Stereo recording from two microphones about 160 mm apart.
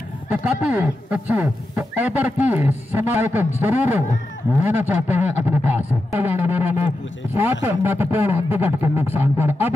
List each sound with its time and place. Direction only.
0.3 s speech: 10° right (ahead or behind)
4.6 s speech: 10° right (ahead or behind)